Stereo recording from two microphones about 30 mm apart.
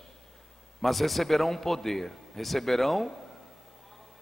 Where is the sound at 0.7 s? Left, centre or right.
Centre.